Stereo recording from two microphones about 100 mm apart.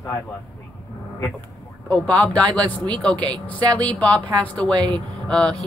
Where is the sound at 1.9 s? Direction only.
15° left (ahead or behind).